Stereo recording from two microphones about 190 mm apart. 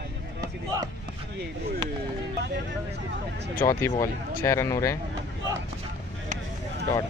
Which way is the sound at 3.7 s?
15° left (ahead or behind).